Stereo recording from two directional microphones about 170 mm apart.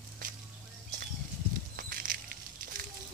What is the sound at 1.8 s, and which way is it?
Patter, 60° right (ahead or behind).